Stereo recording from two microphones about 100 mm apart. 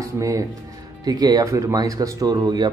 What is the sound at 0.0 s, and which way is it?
Speech, 35° right (ahead or behind).